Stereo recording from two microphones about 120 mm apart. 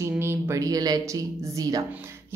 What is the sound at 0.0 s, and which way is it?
Speech, 20° right (ahead or behind).